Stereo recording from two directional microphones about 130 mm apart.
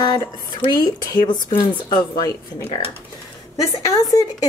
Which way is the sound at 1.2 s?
35° left (ahead or behind).